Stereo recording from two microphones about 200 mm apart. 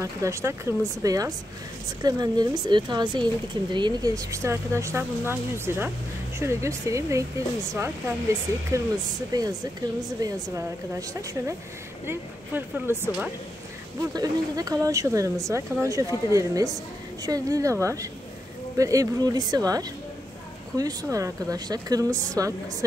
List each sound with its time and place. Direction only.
0.0 s speech: 15° right (ahead or behind)